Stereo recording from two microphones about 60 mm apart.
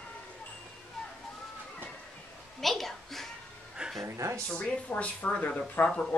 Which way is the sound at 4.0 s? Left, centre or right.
Right.